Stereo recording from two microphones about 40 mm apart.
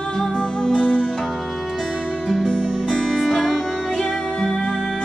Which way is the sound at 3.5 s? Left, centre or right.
Centre.